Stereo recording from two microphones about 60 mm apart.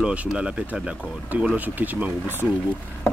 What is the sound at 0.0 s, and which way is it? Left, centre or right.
Speech, right.